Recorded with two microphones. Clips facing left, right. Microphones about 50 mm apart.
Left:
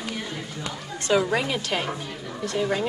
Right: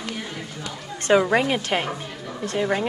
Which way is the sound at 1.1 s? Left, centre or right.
Right.